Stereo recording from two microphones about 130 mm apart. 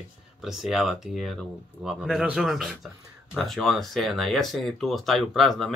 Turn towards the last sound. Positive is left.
turn(degrees=0)  # may be behind; listen again after turning